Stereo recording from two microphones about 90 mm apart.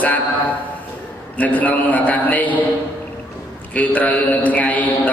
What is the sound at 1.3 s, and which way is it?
A man's voice, 15° left (ahead or behind).